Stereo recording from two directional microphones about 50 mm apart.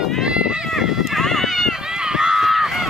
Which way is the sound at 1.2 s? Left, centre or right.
Centre.